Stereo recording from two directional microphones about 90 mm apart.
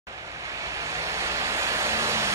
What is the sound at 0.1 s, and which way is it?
Waves, 35° right (ahead or behind).